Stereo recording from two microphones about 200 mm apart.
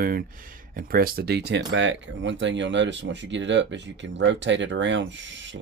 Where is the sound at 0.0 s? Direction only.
45° right (ahead or behind).